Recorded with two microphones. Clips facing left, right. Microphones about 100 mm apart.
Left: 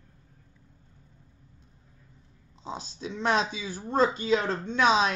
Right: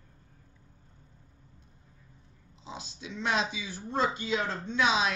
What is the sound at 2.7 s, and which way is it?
A woman's voice, 40° left (ahead or behind).